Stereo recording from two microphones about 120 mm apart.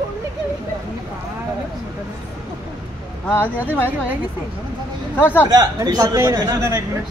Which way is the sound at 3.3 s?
15° left (ahead or behind).